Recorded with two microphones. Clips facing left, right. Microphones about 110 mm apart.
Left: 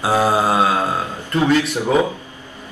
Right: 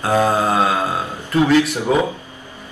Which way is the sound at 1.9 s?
5° right (ahead or behind).